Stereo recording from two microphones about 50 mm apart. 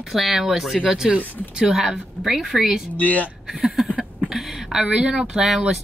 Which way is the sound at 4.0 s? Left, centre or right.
Centre.